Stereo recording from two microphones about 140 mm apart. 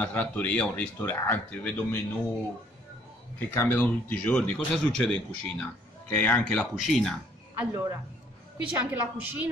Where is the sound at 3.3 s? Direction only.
15° left (ahead or behind).